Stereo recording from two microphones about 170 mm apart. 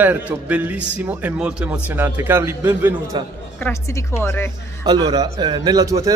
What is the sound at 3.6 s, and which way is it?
Speech, 15° left (ahead or behind).